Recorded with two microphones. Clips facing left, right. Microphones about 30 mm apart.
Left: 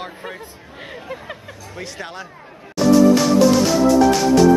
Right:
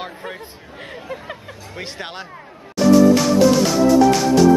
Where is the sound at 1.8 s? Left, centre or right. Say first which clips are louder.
Right 1 dB; right.